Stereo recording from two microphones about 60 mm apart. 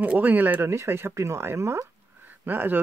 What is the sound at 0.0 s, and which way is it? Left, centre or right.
Speech, right.